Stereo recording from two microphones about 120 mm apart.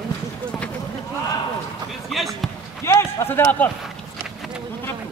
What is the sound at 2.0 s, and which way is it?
Speech, centre (ahead or behind).